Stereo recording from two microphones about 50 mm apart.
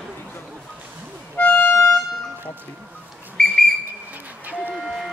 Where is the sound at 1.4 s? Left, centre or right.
Left.